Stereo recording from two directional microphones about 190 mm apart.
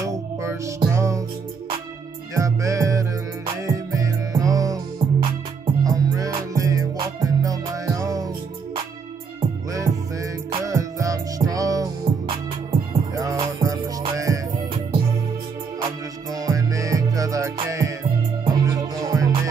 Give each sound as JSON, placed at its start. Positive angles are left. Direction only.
{"t": 0.0, "sound": "music", "side_deg": -15}
{"t": 2.3, "sound": "music", "side_deg": -15}
{"t": 9.7, "sound": "music", "side_deg": -15}
{"t": 15.8, "sound": "music", "side_deg": -20}